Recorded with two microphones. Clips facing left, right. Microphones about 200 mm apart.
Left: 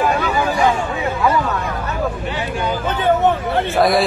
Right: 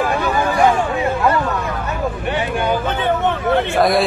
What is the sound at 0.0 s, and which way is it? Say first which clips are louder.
Hubbub: even; 50° right (ahead or behind).